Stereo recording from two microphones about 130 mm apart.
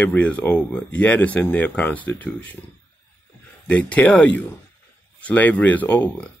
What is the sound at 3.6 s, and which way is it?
Speech, 10° left (ahead or behind).